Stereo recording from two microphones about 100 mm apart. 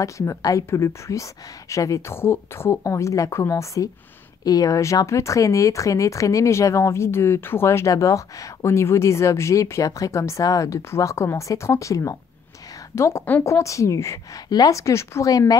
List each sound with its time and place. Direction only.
0.0 s a woman's voice: 30° left (ahead or behind)